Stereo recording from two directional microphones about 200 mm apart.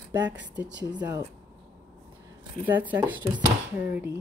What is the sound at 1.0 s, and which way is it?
Speech, 15° right (ahead or behind).